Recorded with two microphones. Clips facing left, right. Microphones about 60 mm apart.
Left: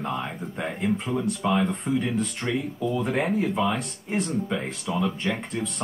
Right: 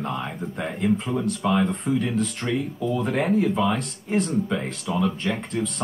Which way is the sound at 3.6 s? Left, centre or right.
Left.